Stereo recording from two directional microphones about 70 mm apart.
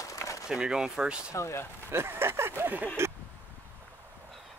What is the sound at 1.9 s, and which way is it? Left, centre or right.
Speech, right.